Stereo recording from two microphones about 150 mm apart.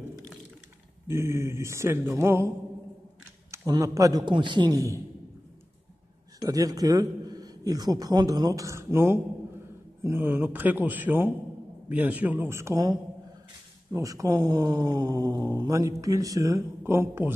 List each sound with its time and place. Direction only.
1.0 s a man's voice: 20° right (ahead or behind)
3.5 s speech: 25° right (ahead or behind)
6.4 s a man's voice: 25° right (ahead or behind)
13.9 s speech: 20° right (ahead or behind)